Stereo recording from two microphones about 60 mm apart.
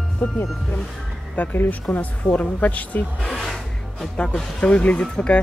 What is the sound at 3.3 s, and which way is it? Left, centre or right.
Music, centre.